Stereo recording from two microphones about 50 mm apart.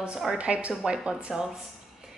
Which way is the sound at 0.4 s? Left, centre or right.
Right.